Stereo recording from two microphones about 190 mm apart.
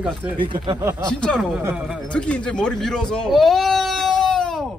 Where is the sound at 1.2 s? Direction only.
Centre (ahead or behind).